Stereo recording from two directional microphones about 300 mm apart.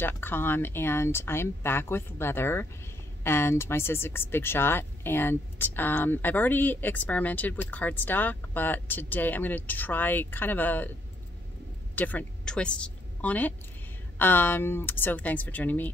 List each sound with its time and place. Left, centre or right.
0.0 s speech: centre
11.9 s a woman's voice: centre